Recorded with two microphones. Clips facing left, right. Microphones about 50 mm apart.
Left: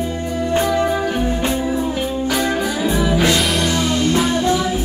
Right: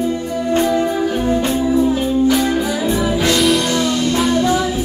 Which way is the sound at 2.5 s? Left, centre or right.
Left.